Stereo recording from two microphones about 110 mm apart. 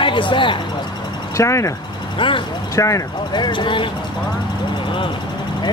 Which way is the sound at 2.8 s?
30° left (ahead or behind).